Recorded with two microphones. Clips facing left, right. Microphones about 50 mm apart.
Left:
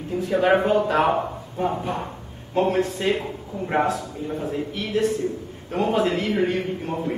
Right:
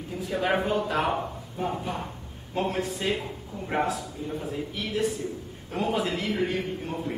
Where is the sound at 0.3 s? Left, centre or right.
Centre.